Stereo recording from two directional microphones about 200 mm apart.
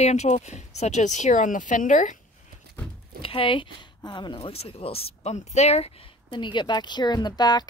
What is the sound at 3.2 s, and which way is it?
Speech, 25° left (ahead or behind).